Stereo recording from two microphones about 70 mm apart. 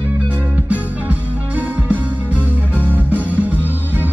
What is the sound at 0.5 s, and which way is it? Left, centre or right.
Music, right.